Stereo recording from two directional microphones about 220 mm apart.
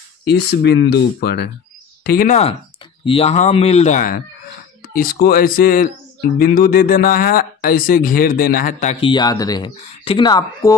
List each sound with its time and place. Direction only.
0.2 s speech: 50° left (ahead or behind)
2.0 s speech: 40° left (ahead or behind)
9.0 s speech: 20° left (ahead or behind)